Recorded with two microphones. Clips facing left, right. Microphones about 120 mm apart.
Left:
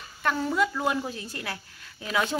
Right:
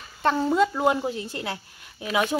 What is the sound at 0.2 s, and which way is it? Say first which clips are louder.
A woman's voice: right 5 dB; 30° right (ahead or behind).